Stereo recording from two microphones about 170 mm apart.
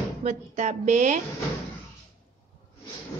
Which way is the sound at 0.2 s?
40° right (ahead or behind).